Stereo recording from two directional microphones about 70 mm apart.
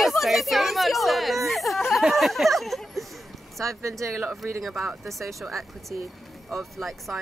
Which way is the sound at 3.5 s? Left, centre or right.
Right.